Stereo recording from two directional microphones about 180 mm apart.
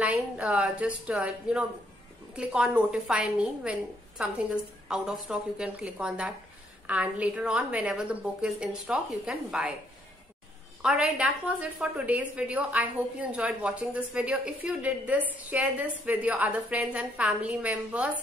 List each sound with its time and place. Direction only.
0.0 s a woman's voice: 5° right (ahead or behind)
10.8 s a woman's voice: 5° right (ahead or behind)